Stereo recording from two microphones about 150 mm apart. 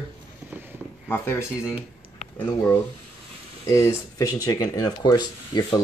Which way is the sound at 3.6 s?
20° left (ahead or behind).